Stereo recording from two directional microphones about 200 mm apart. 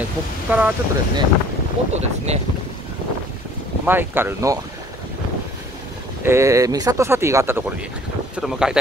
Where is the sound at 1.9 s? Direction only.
35° right (ahead or behind).